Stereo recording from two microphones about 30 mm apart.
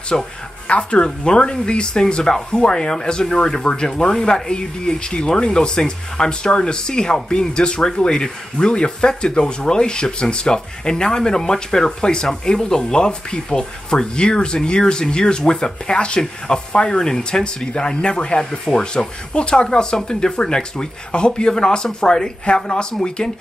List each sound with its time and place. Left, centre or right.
0.1 s speech: left
0.7 s speech: left
1.0 s speech: left
22.4 s speech: left